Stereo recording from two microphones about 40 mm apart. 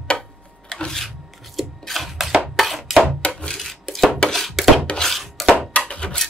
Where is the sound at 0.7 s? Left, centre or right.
Centre.